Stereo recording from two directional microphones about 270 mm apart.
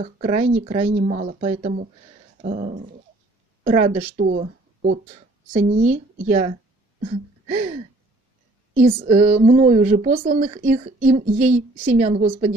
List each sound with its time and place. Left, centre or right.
0.0 s speech: right
0.9 s speech: right
3.8 s speech: right
7.5 s speech: right
8.9 s speech: right